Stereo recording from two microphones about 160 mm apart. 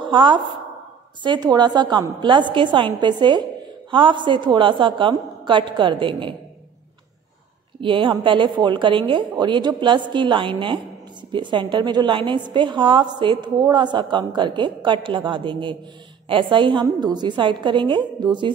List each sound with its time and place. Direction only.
0.0 s a woman's voice: 30° right (ahead or behind)
7.8 s a woman's voice: 30° right (ahead or behind)